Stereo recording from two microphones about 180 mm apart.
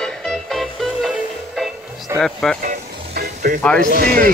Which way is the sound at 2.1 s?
Centre (ahead or behind).